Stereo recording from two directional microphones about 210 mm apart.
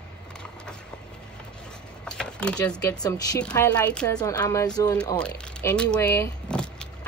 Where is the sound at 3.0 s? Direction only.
20° left (ahead or behind).